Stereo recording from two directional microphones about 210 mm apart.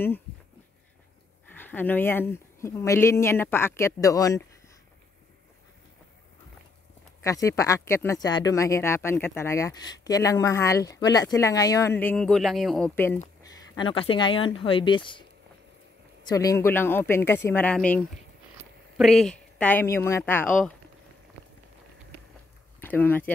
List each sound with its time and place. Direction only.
1.5 s speech: 10° left (ahead or behind)
7.2 s speech: 15° left (ahead or behind)
13.7 s speech: 25° left (ahead or behind)
16.3 s speech: 15° left (ahead or behind)
22.8 s speech: 10° left (ahead or behind)